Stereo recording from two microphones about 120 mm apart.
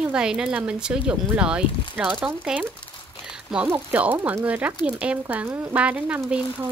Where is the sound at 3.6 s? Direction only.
15° right (ahead or behind).